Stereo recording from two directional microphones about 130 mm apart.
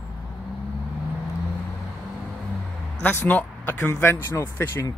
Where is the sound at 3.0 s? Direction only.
15° left (ahead or behind).